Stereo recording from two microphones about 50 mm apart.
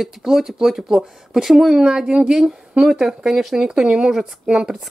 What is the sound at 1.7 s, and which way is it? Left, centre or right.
A woman's voice, centre.